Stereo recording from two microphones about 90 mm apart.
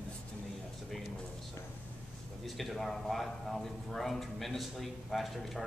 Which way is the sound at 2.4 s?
Centre (ahead or behind).